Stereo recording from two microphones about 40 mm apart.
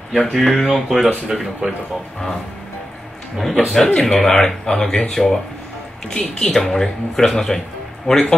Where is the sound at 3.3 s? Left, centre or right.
Centre.